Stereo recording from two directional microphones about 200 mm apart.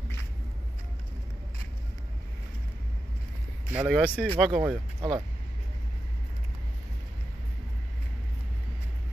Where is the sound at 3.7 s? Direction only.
5° right (ahead or behind).